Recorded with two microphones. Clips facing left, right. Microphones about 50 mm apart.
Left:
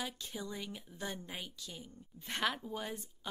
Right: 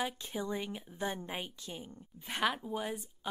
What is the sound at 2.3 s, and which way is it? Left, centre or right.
Speech, centre.